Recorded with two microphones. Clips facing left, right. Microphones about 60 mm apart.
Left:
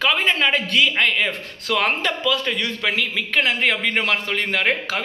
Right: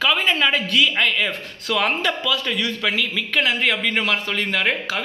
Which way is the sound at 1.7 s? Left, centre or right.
Left.